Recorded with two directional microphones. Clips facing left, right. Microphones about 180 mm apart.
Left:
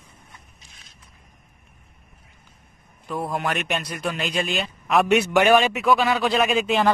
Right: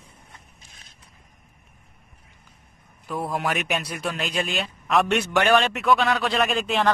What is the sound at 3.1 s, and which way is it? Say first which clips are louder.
Speech: even; centre (ahead or behind).